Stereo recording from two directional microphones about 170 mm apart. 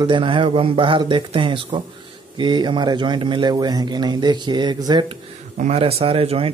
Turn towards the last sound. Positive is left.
turn(degrees=-35)  # may be behind; listen again after turning